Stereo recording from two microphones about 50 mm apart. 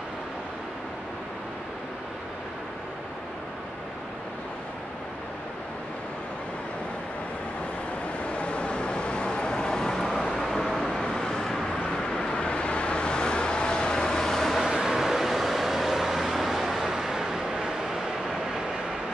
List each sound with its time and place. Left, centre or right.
8.3 s vehicle: left; by 14.6 s centre
14.6 s vehicle: centre